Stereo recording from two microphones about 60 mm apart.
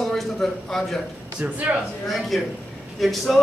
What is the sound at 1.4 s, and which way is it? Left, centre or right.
Speech, right.